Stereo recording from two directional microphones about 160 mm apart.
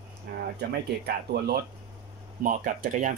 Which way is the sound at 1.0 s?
80° right.